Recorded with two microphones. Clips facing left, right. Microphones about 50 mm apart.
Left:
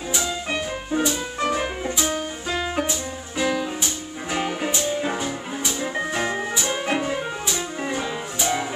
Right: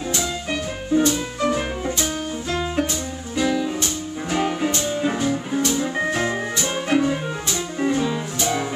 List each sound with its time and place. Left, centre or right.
0.1 s music: centre